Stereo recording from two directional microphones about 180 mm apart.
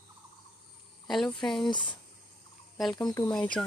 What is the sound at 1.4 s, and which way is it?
Speech, 5° left (ahead or behind).